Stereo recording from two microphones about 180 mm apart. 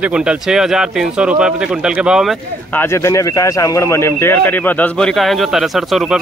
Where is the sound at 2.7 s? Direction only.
15° left (ahead or behind).